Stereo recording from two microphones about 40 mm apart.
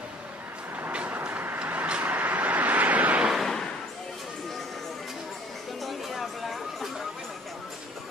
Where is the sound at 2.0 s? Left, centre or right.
Right.